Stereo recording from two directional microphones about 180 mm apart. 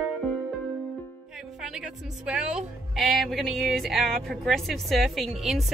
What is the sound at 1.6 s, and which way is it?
A woman's voice, 5° right (ahead or behind).